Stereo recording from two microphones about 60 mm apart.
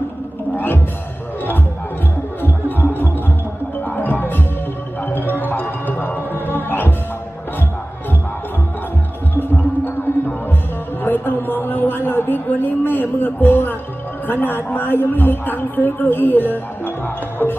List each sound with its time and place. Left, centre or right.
0.6 s music: left
2.4 s music: left
9.3 s music: left
11.1 s speech: left